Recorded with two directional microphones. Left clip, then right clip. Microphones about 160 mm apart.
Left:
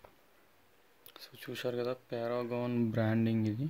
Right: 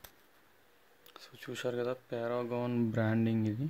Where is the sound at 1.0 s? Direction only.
Centre (ahead or behind).